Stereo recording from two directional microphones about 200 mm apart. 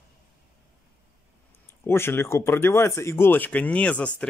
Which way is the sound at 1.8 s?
10° left (ahead or behind).